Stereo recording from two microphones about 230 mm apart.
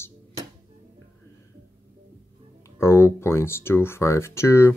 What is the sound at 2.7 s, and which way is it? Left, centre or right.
Speech, centre.